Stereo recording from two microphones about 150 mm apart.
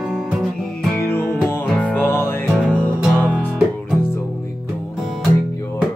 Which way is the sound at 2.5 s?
5° right (ahead or behind).